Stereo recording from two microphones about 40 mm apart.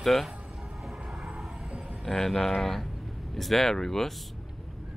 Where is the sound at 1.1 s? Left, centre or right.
Right.